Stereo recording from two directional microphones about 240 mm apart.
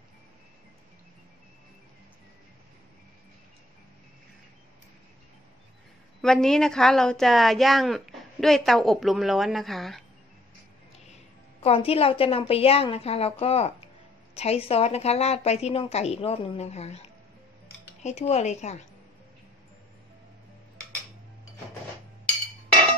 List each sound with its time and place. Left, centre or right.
6.2 s a woman's voice: centre
11.6 s a woman's voice: left
18.0 s a woman's voice: left